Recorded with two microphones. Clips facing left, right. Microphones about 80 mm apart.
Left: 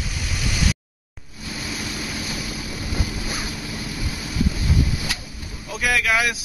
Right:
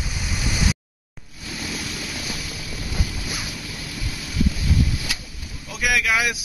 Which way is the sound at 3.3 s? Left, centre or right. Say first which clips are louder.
Left 2 dB; centre.